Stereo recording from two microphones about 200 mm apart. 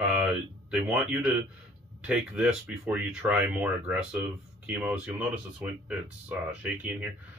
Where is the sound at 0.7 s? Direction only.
5° right (ahead or behind).